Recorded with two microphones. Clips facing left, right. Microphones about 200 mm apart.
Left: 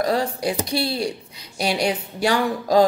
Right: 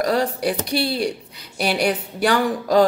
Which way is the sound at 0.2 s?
65° right (ahead or behind).